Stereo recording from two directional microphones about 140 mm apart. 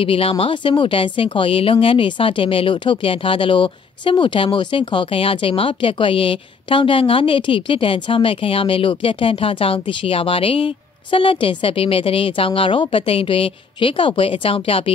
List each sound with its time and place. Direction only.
0.0 s speech: 40° left (ahead or behind)